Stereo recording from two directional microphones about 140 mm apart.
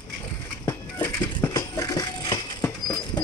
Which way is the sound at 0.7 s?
20° left (ahead or behind).